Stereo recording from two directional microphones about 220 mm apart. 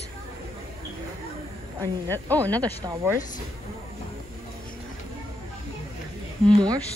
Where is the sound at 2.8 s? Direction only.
15° right (ahead or behind).